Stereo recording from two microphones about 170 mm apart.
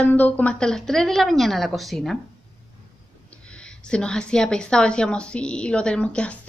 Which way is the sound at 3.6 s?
5° left (ahead or behind).